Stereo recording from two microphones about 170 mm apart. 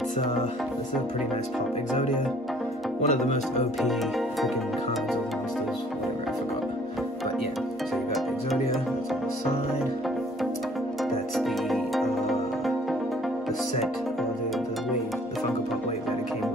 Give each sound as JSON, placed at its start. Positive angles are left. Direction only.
{"t": 2.0, "sound": "speech", "side_deg": 45}
{"t": 11.3, "sound": "music", "side_deg": 0}